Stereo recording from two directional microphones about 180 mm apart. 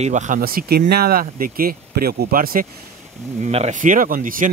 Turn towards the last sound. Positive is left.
turn(degrees=-50)  # may be behind; listen again after turning